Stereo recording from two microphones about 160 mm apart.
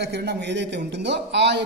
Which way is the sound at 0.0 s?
90° right.